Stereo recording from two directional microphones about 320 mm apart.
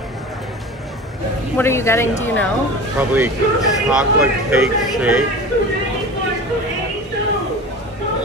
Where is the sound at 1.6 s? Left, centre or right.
Centre.